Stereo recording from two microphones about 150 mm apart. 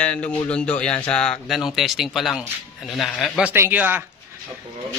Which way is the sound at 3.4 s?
10° right (ahead or behind).